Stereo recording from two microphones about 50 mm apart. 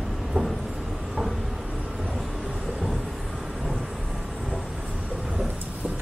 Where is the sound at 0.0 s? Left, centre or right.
Centre.